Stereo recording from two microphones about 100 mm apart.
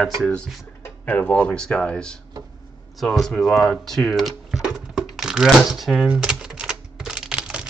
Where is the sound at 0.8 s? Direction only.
15° left (ahead or behind).